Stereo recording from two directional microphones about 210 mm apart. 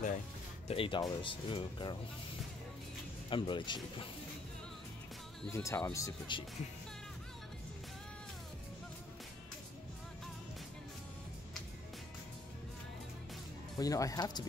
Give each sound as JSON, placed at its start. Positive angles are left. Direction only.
{"t": 0.7, "sound": "speech", "side_deg": 25}
{"t": 3.3, "sound": "speech", "side_deg": 25}
{"t": 5.5, "sound": "speech", "side_deg": 15}
{"t": 13.7, "sound": "speech", "side_deg": 15}